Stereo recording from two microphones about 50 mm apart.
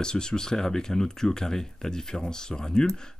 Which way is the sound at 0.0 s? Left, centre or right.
Centre.